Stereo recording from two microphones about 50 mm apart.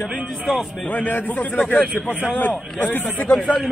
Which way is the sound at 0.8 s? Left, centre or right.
Left.